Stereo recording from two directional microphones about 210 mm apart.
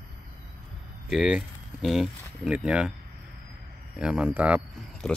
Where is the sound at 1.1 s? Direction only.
Centre (ahead or behind).